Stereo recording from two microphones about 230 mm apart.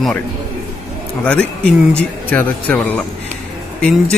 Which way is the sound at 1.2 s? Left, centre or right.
Centre.